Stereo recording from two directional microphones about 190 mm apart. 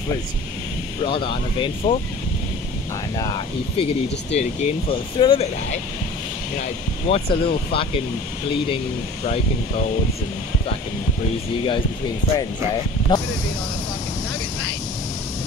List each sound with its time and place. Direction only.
1.0 s speech: 25° left (ahead or behind)
3.2 s speech: 25° left (ahead or behind)
7.1 s speech: 30° left (ahead or behind)
13.1 s spray: 20° left (ahead or behind)